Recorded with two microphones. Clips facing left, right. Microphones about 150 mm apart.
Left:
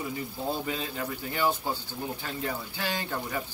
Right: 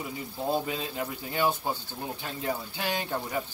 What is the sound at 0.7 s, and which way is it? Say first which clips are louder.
Speech: even; 20° right (ahead or behind).